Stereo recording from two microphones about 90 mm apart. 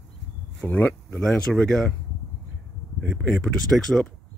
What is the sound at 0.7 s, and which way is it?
Speech, 15° left (ahead or behind).